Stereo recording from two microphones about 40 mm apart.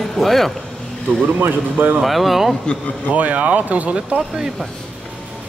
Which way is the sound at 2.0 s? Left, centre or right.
Centre.